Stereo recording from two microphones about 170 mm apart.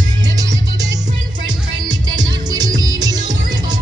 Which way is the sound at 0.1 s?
25° right (ahead or behind).